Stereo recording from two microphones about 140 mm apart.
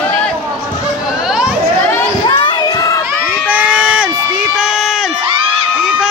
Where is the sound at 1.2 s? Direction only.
5° right (ahead or behind).